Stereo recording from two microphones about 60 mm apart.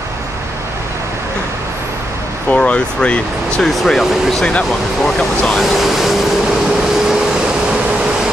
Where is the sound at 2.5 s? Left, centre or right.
Centre.